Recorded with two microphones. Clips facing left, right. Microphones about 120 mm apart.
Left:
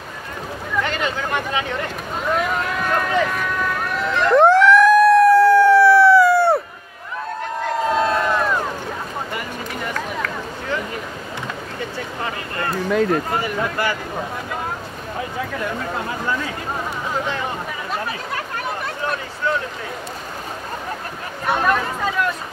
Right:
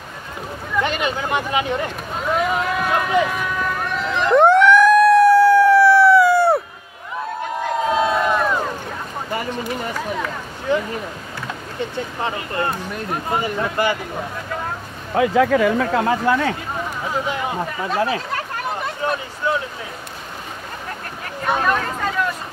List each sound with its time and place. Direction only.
0.8 s speech: 15° right (ahead or behind)
2.2 s run: 5° right (ahead or behind)
7.7 s crowd: 5° right (ahead or behind)
9.9 s a sound: 15° right (ahead or behind)
12.2 s a sound: 25° right (ahead or behind)
13.8 s speech: 20° right (ahead or behind)
15.1 s speech: 90° right
17.9 s speech: 90° right
21.5 s a sound: 5° left (ahead or behind)